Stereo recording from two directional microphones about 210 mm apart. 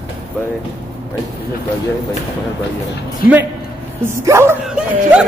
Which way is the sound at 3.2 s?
45° left (ahead or behind).